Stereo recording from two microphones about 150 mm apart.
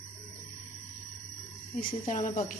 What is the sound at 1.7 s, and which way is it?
Speech, 60° left (ahead or behind).